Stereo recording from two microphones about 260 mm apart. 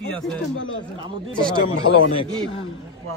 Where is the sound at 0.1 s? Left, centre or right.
Centre.